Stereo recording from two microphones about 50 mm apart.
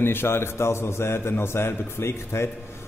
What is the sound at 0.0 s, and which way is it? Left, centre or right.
A man's voice, left.